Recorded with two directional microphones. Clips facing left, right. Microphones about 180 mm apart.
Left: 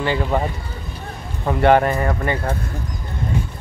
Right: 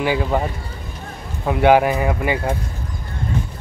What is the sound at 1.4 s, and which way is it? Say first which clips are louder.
Speech: right 1 dB; 5° right (ahead or behind).